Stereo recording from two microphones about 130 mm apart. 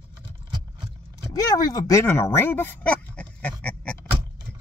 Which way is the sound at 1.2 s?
30° left (ahead or behind).